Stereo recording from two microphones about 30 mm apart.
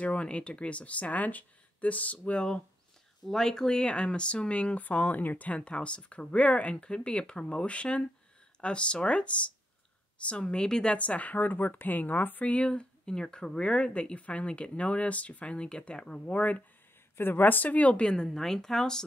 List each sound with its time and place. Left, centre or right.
0.0 s speech: left
3.3 s speech: centre; by 4.7 s left
4.7 s speech: left
5.5 s speech: left
10.3 s speech: left
11.0 s speech: left
11.3 s speech: left
12.4 s speech: left
13.0 s speech: left
13.9 s speech: left
16.3 s speech: left
17.4 s speech: left
17.7 s speech: left
18.0 s speech: left